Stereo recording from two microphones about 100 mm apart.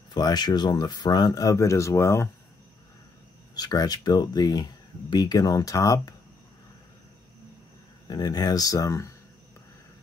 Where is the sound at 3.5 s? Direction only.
40° left (ahead or behind).